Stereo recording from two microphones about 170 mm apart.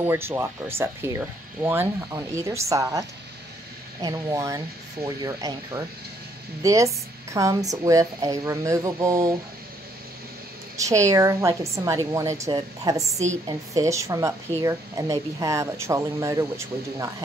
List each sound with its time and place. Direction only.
0.0 s speech: 15° right (ahead or behind)
10.8 s speech: 20° right (ahead or behind)